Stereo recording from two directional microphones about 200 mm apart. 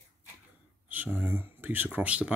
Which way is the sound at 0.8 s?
10° right (ahead or behind).